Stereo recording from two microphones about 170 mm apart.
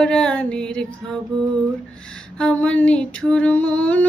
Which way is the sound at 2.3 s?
5° left (ahead or behind).